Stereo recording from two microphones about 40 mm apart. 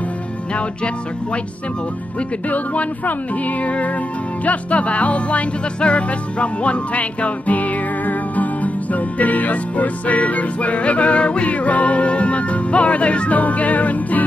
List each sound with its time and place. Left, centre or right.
2.5 s music: left